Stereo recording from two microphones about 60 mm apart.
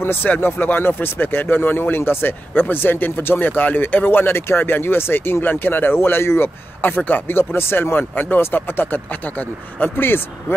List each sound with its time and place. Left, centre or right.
0.0 s speech: left